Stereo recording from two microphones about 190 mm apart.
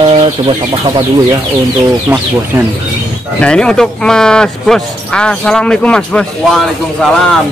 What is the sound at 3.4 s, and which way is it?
A man's voice, 5° left (ahead or behind).